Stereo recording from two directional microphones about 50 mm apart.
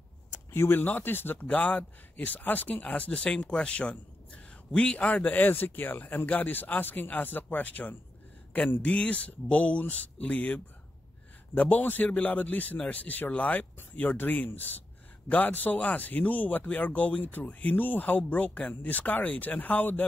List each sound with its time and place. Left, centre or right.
0.5 s speech: left